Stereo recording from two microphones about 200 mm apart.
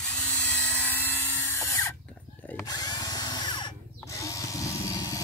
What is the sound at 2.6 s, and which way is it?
Drill, 20° left (ahead or behind).